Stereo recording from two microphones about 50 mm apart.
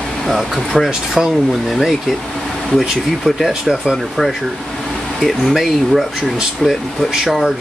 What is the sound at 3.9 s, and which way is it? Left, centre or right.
Speech, centre.